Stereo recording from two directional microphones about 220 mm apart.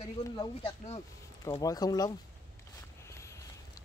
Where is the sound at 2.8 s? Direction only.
15° left (ahead or behind).